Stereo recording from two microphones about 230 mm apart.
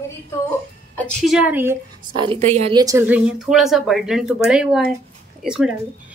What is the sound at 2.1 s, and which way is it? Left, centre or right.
Speech, right.